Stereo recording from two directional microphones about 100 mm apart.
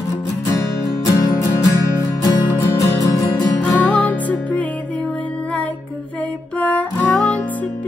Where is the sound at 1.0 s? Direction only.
35° left (ahead or behind).